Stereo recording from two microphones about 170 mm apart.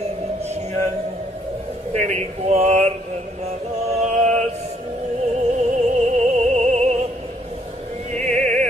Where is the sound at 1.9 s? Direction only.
40° right (ahead or behind).